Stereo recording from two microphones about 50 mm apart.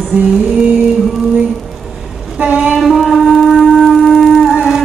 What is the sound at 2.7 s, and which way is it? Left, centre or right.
Music, centre.